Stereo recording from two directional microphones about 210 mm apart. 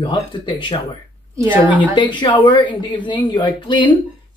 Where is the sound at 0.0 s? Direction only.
20° left (ahead or behind).